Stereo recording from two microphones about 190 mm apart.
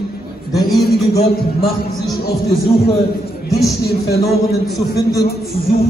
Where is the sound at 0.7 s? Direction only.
60° left (ahead or behind).